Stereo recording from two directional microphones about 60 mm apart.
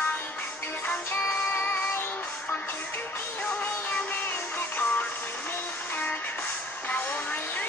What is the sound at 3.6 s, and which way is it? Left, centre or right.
Music, left.